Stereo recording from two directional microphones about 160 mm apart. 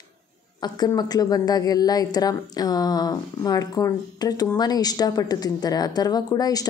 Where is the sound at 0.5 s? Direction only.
25° left (ahead or behind).